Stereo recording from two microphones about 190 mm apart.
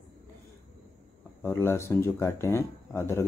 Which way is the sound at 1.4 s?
10° left (ahead or behind).